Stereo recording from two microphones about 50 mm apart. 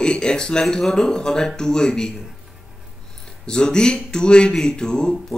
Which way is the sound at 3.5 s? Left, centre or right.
Centre.